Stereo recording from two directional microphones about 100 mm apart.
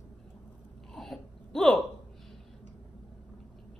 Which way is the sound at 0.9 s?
5° left (ahead or behind).